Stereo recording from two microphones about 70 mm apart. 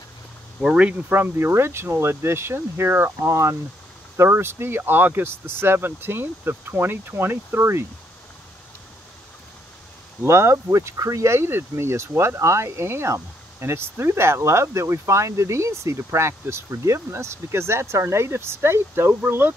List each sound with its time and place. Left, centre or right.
0.6 s speech: centre
1.1 s speech: right
3.3 s speech: right
4.2 s speech: right
10.2 s speech: right